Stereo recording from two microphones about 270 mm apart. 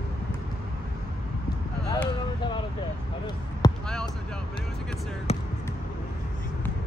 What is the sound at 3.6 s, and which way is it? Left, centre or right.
Basketball bounce, centre.